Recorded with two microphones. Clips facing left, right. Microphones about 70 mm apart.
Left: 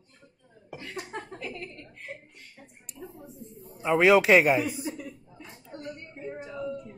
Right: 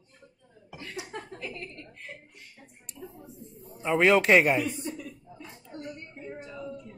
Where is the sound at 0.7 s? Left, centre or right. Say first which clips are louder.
Left 1 dB; left.